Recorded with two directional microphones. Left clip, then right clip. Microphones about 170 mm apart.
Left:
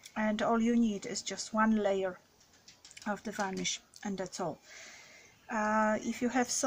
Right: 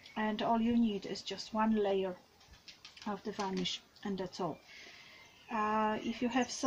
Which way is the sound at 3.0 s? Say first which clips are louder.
Left 4 dB; 5° right (ahead or behind).